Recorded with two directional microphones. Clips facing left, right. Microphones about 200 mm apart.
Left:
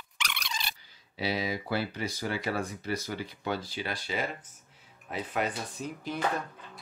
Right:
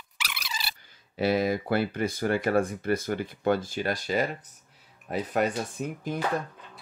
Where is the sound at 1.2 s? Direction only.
50° right (ahead or behind).